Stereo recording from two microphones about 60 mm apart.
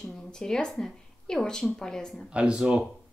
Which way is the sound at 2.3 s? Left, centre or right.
Centre.